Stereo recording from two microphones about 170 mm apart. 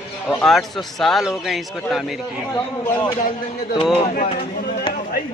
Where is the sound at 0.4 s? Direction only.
Centre (ahead or behind).